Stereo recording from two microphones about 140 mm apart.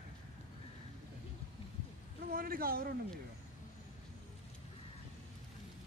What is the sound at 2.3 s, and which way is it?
Speech, 90° right.